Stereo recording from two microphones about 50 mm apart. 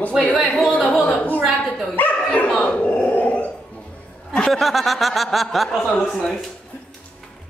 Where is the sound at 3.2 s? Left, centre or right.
Left.